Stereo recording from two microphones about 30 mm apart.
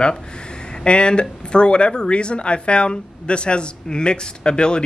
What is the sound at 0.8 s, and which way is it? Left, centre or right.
A woman's voice, left.